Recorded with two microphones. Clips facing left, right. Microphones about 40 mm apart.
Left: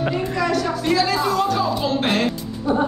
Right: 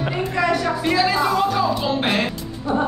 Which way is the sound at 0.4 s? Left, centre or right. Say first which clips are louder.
Right 3 dB; right.